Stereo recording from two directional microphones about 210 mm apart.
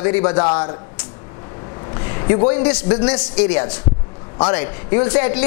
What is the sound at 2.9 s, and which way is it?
A man's voice, 25° left (ahead or behind).